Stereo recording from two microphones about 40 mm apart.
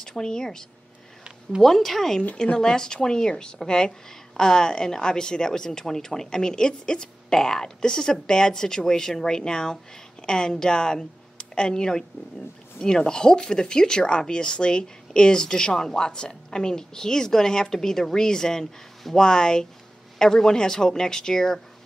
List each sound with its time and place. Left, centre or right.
0.0 s speech: centre
2.3 s speech: left